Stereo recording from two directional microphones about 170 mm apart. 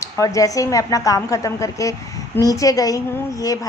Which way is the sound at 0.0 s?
20° left (ahead or behind).